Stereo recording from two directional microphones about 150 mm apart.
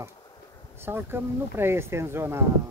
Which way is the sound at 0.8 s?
15° right (ahead or behind).